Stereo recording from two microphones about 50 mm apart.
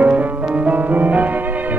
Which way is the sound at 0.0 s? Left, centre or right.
Right.